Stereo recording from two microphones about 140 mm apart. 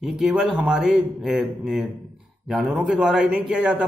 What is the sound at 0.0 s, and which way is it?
Speech, 5° right (ahead or behind).